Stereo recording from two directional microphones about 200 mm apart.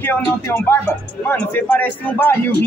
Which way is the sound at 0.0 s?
10° left (ahead or behind).